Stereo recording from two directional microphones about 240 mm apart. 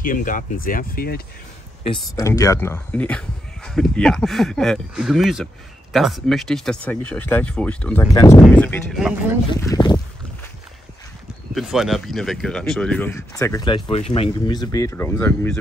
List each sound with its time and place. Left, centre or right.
0.0 s speech: left
2.1 s speech: centre
9.7 s speech: centre
11.5 s speech: centre